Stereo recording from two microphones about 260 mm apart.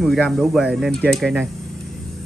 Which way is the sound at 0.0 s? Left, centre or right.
Centre.